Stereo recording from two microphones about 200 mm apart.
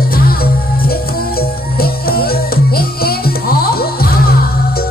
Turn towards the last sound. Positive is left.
turn(degrees=50)  # may be behind; listen again after turning